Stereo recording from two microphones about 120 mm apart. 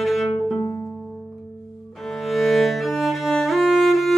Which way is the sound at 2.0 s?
Centre (ahead or behind).